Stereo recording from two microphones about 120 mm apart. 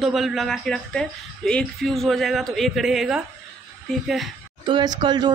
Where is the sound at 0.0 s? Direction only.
Centre (ahead or behind).